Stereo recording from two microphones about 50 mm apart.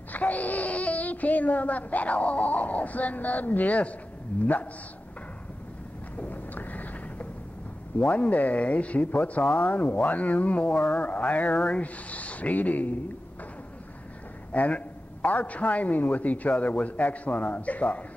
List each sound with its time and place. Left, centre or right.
0.1 s speech: left
6.1 s a sound: left
8.1 s speech: left
14.5 s a man's voice: left